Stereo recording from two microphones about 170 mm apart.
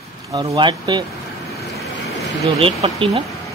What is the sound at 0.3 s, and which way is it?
Speech, 25° right (ahead or behind).